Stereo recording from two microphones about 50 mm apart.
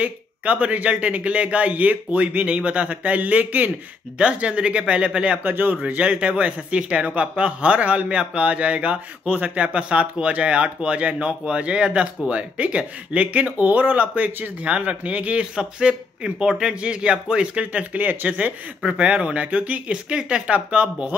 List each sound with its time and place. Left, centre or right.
0.0 s a man's voice: right
4.2 s a man's voice: right
5.4 s a man's voice: right
5.9 s a man's voice: right
17.9 s a man's voice: right